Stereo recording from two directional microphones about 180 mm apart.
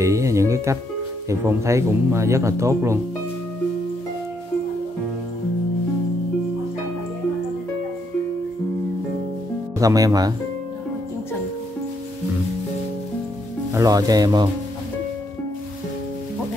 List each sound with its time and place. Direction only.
0.0 s music: 15° right (ahead or behind)
1.3 s speech: 15° right (ahead or behind)
9.8 s speech: 20° right (ahead or behind)
13.7 s speech: 20° right (ahead or behind)